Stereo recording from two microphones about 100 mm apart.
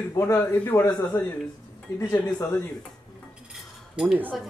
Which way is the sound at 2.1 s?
20° left (ahead or behind).